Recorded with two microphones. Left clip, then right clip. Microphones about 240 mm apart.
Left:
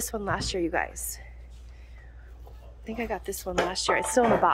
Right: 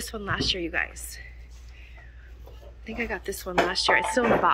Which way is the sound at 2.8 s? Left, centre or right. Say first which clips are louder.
Right 1 dB; centre.